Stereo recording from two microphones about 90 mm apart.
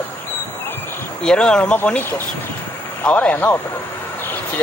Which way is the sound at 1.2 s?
10° left (ahead or behind).